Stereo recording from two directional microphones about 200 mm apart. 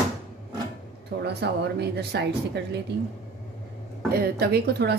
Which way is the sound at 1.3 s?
55° right (ahead or behind).